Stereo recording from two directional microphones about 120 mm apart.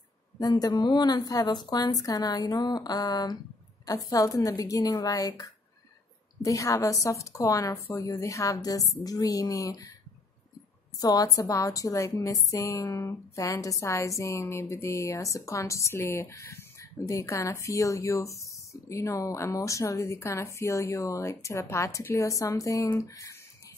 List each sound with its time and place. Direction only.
0.4 s a woman's voice: 35° left (ahead or behind)
11.0 s a woman's voice: 30° left (ahead or behind)